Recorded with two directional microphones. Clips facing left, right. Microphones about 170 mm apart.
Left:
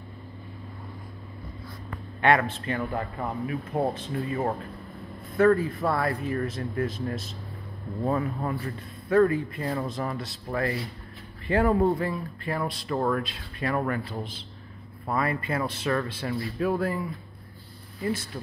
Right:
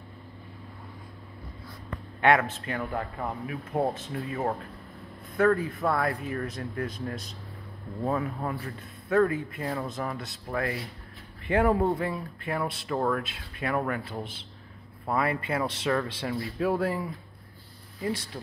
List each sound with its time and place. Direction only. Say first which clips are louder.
2.3 s speech: left 1 dB; centre (ahead or behind)
11.4 s speech: left 1 dB; 15° right (ahead or behind)